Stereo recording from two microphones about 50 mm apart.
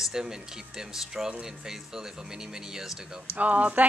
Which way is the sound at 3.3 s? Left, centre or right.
Right.